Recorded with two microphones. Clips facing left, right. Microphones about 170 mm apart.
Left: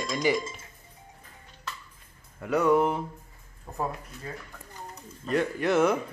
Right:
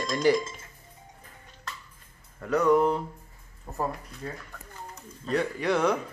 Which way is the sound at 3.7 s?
5° right (ahead or behind).